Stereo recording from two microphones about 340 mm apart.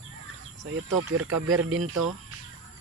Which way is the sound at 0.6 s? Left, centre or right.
Right.